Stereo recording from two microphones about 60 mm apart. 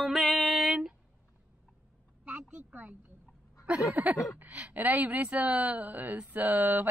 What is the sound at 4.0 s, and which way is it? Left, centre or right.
Speech, right.